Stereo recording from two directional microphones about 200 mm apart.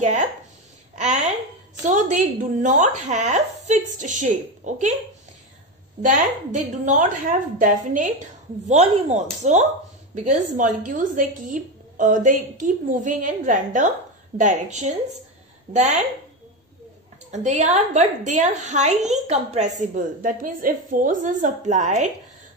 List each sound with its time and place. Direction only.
0.0 s a woman's voice: 35° right (ahead or behind)
6.0 s a woman's voice: 40° right (ahead or behind)
17.3 s a woman's voice: 35° right (ahead or behind)